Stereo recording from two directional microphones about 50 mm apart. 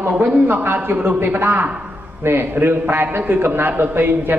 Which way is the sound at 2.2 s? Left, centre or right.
Right.